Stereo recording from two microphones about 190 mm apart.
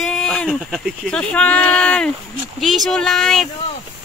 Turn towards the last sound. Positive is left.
turn(degrees=0)  # may be behind; listen again after turning